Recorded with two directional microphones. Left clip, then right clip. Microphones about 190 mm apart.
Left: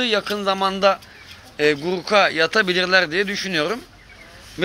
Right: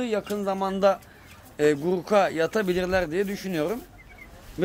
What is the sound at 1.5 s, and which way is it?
Speech, 25° right (ahead or behind).